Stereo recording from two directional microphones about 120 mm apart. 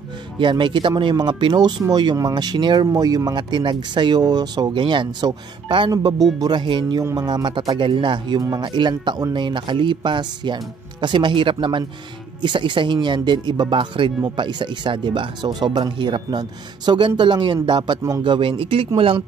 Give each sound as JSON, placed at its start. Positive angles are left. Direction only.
{"t": 0.4, "sound": "speech", "side_deg": -40}